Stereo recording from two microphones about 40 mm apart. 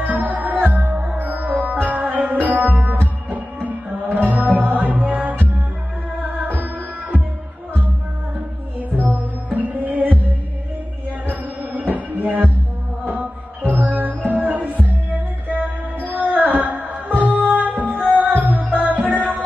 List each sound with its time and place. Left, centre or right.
0.0 s music: right
6.5 s music: right
9.0 s music: right
11.8 s music: right
16.3 s a sound: right
17.2 s music: right